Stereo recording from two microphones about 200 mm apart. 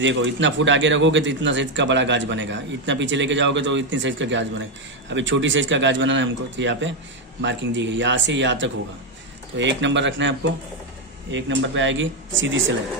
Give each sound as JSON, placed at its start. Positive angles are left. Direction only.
{"t": 0.0, "sound": "a man's voice", "side_deg": -65}